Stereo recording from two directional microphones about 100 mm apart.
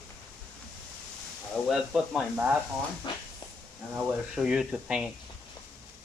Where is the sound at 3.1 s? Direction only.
50° left (ahead or behind).